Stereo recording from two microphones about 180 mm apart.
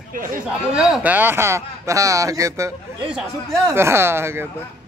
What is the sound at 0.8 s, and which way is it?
Speech, 5° right (ahead or behind).